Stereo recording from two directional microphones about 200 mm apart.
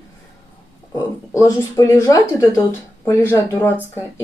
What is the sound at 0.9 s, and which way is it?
Speech, 15° left (ahead or behind).